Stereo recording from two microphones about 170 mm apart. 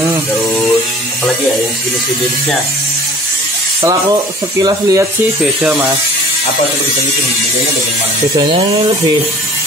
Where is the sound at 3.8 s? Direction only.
25° right (ahead or behind).